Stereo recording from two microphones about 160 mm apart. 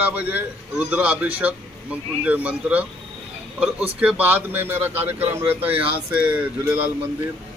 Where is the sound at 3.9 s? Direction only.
10° right (ahead or behind).